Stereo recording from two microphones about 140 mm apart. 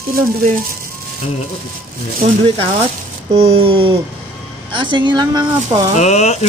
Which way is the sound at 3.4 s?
45° right (ahead or behind).